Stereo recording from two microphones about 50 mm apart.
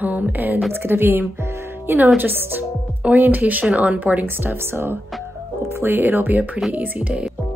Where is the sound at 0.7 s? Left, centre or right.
Right.